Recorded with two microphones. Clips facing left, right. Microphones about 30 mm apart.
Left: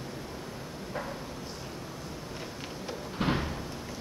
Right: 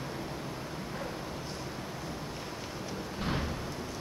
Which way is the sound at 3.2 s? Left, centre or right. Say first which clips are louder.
Left 6 dB; left.